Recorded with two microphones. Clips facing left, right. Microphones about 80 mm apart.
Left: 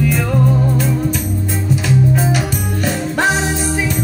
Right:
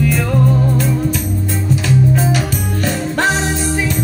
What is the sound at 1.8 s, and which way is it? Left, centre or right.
Music, centre.